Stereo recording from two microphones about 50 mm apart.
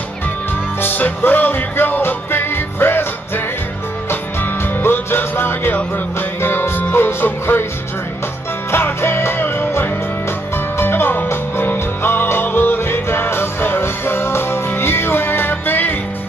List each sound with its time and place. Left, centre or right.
0.7 s music: left
4.1 s music: left
8.7 s music: left